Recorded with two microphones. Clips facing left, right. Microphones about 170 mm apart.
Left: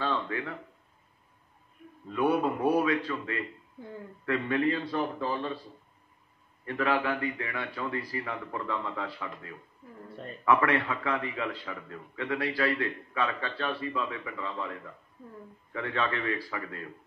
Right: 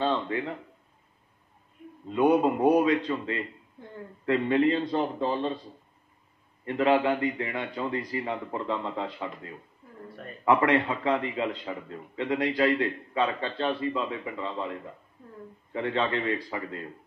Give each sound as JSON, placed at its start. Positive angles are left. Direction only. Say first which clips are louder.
{"t": 0.0, "sound": "a sound", "louder": "right 4 dB", "side_deg": -25}
{"t": 2.0, "sound": "a man's voice", "louder": "right 5 dB", "side_deg": -25}
{"t": 6.6, "sound": "a man's voice", "louder": "right 5 dB", "side_deg": -20}